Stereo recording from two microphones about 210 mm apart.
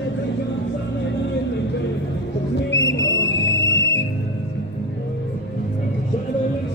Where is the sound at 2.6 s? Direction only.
60° left (ahead or behind).